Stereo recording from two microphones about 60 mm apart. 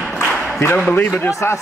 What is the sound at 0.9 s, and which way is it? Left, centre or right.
Speech, left.